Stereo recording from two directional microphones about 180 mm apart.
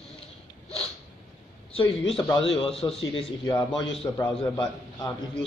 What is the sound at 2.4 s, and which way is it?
A man's voice, 30° left (ahead or behind).